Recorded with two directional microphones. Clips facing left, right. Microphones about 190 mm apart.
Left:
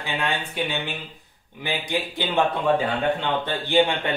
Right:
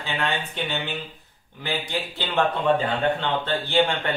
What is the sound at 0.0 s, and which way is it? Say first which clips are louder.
Speech: even; 10° left (ahead or behind).